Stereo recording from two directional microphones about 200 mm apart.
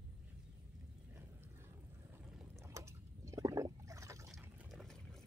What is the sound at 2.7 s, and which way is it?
Liquid, 15° right (ahead or behind).